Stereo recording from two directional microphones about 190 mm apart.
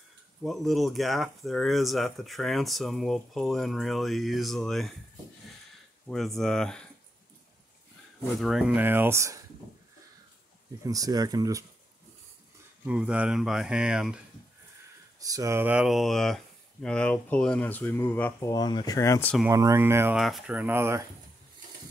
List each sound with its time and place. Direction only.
0.4 s speech: centre (ahead or behind)
6.0 s speech: centre (ahead or behind)
8.3 s speech: centre (ahead or behind)
10.8 s speech: 20° right (ahead or behind)
12.8 s speech: 5° right (ahead or behind)
15.1 s speech: 20° right (ahead or behind); by 19.3 s 15° left (ahead or behind)
19.5 s speech: 15° right (ahead or behind)
20.2 s speech: centre (ahead or behind)